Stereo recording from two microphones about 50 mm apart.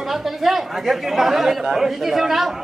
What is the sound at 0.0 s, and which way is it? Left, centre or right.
Speech, centre.